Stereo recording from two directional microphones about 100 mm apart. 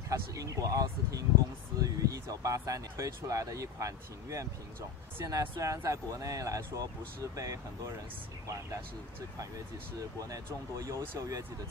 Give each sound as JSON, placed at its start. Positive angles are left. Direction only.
{"t": 0.1, "sound": "speech", "side_deg": -35}
{"t": 9.9, "sound": "speech", "side_deg": -35}